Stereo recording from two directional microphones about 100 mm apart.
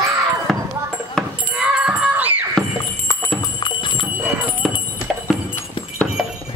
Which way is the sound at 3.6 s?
55° left (ahead or behind).